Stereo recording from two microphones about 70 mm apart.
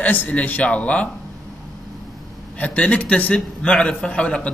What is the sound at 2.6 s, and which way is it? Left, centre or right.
A man's voice, centre.